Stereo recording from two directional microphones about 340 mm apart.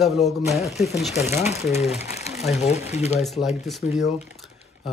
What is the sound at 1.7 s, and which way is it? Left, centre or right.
Speech, centre.